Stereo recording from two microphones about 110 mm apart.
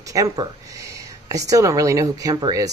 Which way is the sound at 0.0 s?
30° right (ahead or behind).